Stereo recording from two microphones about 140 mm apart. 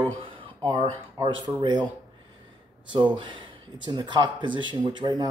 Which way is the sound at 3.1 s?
35° right (ahead or behind).